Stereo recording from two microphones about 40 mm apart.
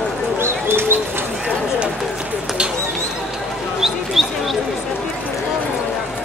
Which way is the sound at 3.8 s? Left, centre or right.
Centre.